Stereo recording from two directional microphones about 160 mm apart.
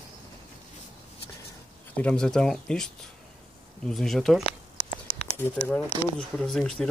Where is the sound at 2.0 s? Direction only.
5° left (ahead or behind).